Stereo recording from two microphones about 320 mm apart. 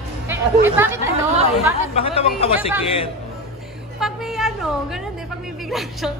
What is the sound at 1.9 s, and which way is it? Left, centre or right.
Speech, centre.